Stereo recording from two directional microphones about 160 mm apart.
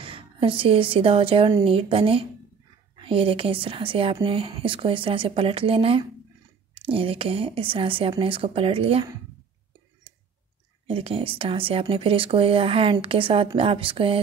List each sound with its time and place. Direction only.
0.0 s a woman's voice: 35° right (ahead or behind)
10.9 s a woman's voice: 35° right (ahead or behind)